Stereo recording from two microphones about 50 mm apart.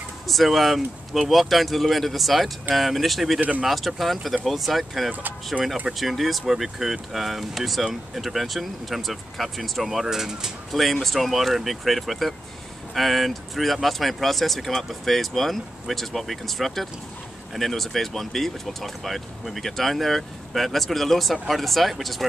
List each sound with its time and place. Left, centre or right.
0.3 s speech: centre
3.3 s speech: right
3.6 s speech: centre